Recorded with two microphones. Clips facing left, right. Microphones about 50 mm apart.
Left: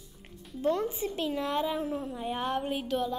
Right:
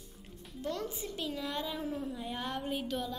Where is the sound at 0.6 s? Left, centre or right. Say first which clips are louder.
Left 9 dB; left.